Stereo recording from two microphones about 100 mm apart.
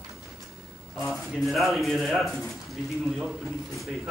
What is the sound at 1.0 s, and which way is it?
Speech, centre (ahead or behind).